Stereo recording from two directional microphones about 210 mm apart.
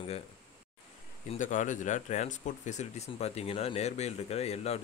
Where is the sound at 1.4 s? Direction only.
35° left (ahead or behind).